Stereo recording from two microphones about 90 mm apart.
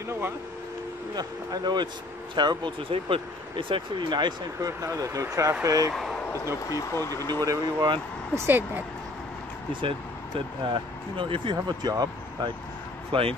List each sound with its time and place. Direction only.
1.1 s speech: 50° right (ahead or behind)
4.6 s speech: 40° right (ahead or behind)
6.7 s speech: 35° left (ahead or behind)
7.2 s speech: 50° right (ahead or behind)
8.4 s speech: 25° right (ahead or behind)
9.7 s speech: 70° right (ahead or behind); by 12.1 s 50° right (ahead or behind)
13.1 s speech: 70° right (ahead or behind)